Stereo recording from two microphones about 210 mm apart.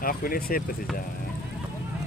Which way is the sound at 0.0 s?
45° left (ahead or behind).